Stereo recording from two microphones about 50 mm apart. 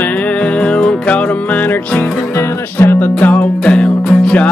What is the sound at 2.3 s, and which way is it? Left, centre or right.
Music, left.